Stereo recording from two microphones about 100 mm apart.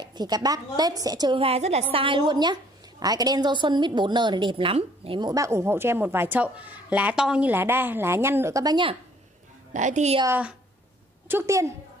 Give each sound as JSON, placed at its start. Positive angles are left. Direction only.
{"t": 0.0, "sound": "a woman's voice", "side_deg": -45}
{"t": 1.3, "sound": "a woman's voice", "side_deg": -80}
{"t": 5.2, "sound": "a woman's voice", "side_deg": -35}
{"t": 7.5, "sound": "a woman's voice", "side_deg": -20}
{"t": 8.6, "sound": "a woman's voice", "side_deg": -50}
{"t": 11.2, "sound": "a woman's voice", "side_deg": -25}